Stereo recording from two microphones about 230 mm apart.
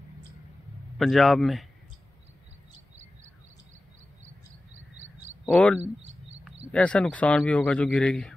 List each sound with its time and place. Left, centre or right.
0.9 s speech: centre
4.9 s a sound: right
5.4 s speech: centre